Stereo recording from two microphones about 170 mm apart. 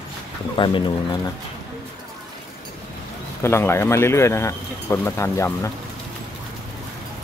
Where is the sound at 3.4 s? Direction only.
15° left (ahead or behind).